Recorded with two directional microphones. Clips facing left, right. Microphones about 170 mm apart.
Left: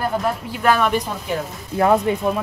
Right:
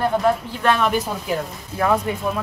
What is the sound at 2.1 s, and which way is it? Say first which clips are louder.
Speech: left 5 dB; 25° left (ahead or behind).